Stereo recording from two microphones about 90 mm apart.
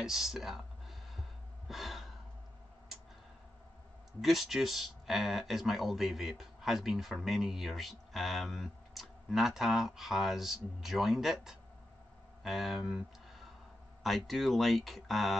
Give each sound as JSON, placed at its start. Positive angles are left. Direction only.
{"t": 0.0, "sound": "a sound", "side_deg": -5}
{"t": 1.7, "sound": "gasp", "side_deg": 0}
{"t": 4.2, "sound": "speech", "side_deg": -5}